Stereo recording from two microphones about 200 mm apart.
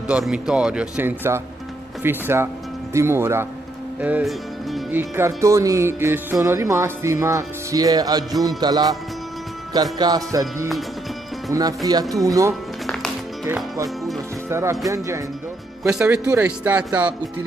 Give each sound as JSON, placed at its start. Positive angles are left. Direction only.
{"t": 0.1, "sound": "speech", "side_deg": -5}
{"t": 4.0, "sound": "music", "side_deg": -5}
{"t": 5.1, "sound": "speech", "side_deg": -15}
{"t": 9.9, "sound": "speech", "side_deg": -20}
{"t": 11.5, "sound": "speech", "side_deg": -20}
{"t": 12.8, "sound": "music", "side_deg": 0}
{"t": 13.5, "sound": "speech", "side_deg": -10}
{"t": 15.8, "sound": "speech", "side_deg": -10}